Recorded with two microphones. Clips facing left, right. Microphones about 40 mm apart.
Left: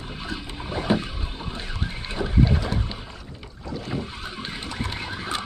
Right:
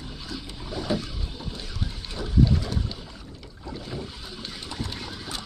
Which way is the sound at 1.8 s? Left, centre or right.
Left.